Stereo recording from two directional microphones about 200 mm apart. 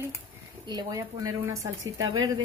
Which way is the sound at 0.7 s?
20° right (ahead or behind).